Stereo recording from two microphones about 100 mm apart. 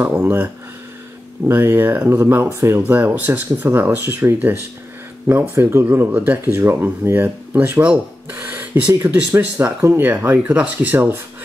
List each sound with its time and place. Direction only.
0.0 s speech: 20° right (ahead or behind)
1.5 s speech: 20° right (ahead or behind)
2.9 s speech: 15° right (ahead or behind)